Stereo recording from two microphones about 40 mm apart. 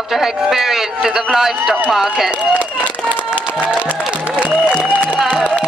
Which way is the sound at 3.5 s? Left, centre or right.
Right.